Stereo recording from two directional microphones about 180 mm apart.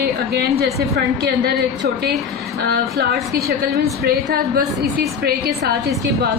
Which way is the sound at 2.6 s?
60° right (ahead or behind).